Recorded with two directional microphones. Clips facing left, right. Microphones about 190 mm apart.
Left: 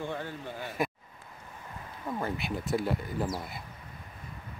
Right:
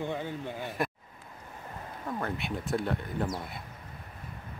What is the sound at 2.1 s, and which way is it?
Speech, 5° left (ahead or behind).